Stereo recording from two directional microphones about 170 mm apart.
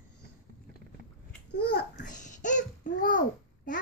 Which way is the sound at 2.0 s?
45° left (ahead or behind).